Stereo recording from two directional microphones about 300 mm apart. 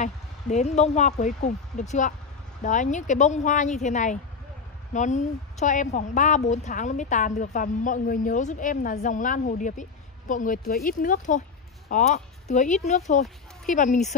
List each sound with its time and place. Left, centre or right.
0.0 s a woman's voice: left